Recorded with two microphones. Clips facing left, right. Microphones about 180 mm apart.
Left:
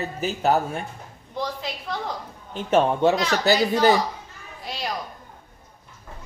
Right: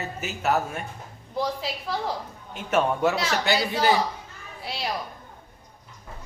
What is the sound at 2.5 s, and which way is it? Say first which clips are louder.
Speech: left 4 dB; 30° left (ahead or behind).